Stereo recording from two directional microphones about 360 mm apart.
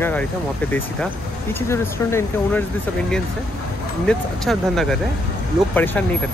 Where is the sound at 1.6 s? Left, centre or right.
Centre.